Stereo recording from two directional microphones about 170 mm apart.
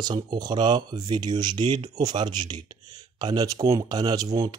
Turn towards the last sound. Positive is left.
turn(degrees=-20)  # may be behind; listen again after turning